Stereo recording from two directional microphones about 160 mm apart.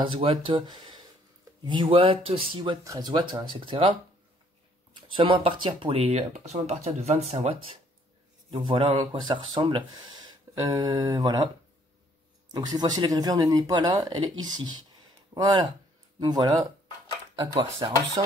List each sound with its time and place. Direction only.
0.0 s speech: 35° right (ahead or behind)
5.0 s speech: 30° right (ahead or behind)
12.5 s speech: 25° right (ahead or behind)